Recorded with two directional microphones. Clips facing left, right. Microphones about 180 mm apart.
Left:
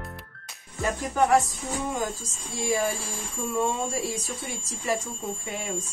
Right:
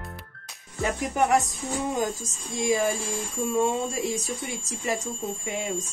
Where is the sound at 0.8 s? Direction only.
20° right (ahead or behind).